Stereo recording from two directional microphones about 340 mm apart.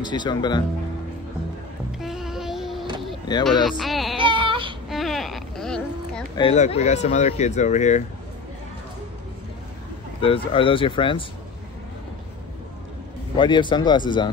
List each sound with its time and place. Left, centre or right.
0.0 s speech: centre
2.0 s a sound: centre
3.6 s speech: centre
4.2 s baby cry: centre
4.8 s a sound: centre
6.3 s speech: centre
10.2 s speech: centre
13.4 s speech: centre